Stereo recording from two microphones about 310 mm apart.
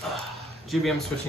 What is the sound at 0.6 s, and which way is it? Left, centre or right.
Speech, centre.